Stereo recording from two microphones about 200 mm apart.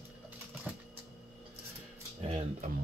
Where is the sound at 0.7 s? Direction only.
10° right (ahead or behind).